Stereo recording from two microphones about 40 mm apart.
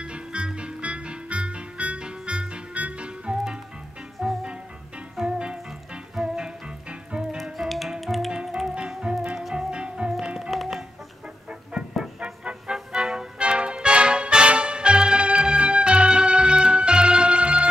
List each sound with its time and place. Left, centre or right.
0.0 s music: right
4.2 s music: centre
6.9 s music: right
7.5 s music: centre
8.6 s music: right
9.4 s music: centre
9.7 s music: right
10.5 s music: centre
12.2 s music: right
13.4 s music: right